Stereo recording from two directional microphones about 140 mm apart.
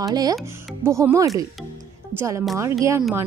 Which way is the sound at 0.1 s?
25° right (ahead or behind).